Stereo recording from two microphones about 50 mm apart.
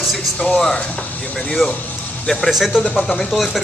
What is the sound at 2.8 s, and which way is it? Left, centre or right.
Speech, left.